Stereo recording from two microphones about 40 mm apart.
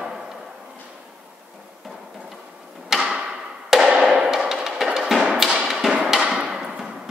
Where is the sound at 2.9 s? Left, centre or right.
Centre.